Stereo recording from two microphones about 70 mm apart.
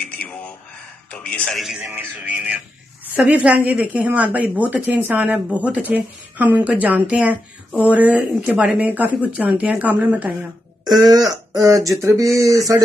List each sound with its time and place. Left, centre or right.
0.2 s a sound: left
1.5 s speech: centre
1.8 s speech: right
10.9 s speech: right